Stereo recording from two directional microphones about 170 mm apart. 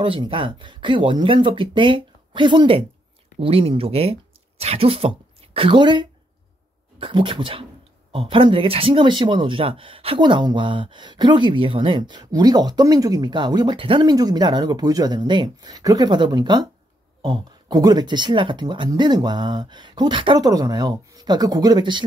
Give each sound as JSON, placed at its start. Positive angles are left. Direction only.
{"t": 0.0, "sound": "speech", "side_deg": -30}